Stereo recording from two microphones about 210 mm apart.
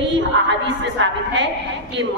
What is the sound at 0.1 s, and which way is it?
A woman's voice, 60° right (ahead or behind).